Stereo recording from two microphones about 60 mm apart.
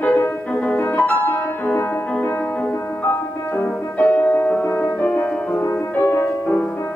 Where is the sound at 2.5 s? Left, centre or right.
Left.